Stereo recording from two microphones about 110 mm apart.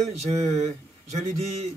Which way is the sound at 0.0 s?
85° right.